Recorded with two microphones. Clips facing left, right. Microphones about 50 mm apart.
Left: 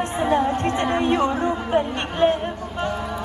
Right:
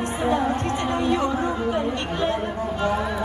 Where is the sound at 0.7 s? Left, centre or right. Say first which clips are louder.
Left 2 dB; left.